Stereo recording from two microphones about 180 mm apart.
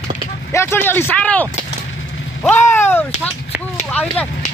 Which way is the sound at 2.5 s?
15° left (ahead or behind).